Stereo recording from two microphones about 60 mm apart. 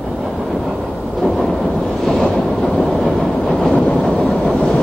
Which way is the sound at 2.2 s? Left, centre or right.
Centre.